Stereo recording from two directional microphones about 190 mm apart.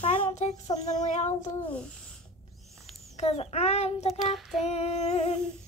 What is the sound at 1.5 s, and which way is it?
Speech, 10° left (ahead or behind).